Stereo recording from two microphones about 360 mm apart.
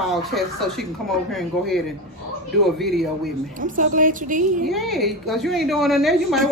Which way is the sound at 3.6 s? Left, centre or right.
Right.